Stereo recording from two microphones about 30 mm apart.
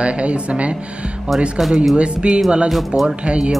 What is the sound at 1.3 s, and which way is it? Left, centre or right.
Speech, centre.